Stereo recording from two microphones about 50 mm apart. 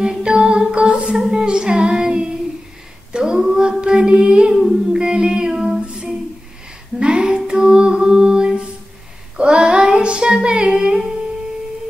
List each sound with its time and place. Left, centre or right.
0.0 s music: centre
3.1 s female singing: centre
3.8 s music: centre
7.0 s female singing: centre
9.4 s child singing: centre